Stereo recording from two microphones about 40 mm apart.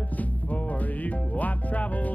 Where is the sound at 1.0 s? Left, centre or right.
Left.